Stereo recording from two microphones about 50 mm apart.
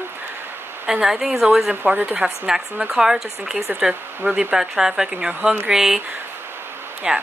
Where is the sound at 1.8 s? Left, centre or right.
Right.